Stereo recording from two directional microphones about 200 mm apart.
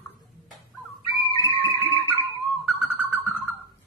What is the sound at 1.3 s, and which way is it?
Music, 15° left (ahead or behind).